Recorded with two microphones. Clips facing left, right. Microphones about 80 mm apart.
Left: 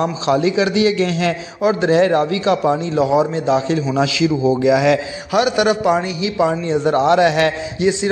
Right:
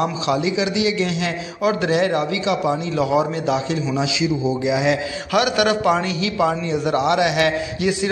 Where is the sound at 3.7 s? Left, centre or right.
Left.